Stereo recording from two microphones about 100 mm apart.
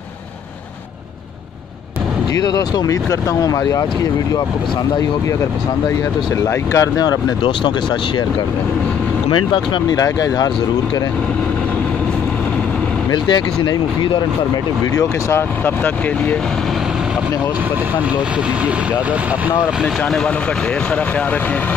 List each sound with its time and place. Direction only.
2.3 s speech: 40° left (ahead or behind)
6.4 s speech: 35° left (ahead or behind)
9.3 s speech: 55° left (ahead or behind)
9.9 s speech: 40° left (ahead or behind)
13.1 s speech: 50° left (ahead or behind)
15.0 s speech: 25° left (ahead or behind)